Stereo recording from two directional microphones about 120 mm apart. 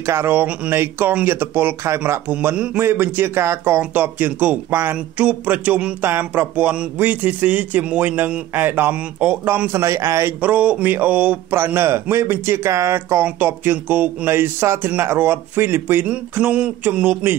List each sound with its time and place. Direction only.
0.0 s speech: 20° right (ahead or behind)